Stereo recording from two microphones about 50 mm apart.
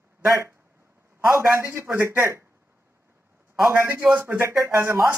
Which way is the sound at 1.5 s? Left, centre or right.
Right.